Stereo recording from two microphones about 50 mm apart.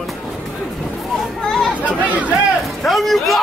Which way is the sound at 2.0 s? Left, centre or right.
Right.